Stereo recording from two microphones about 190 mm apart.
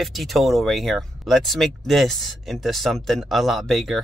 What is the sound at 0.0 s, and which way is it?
Speech, centre (ahead or behind).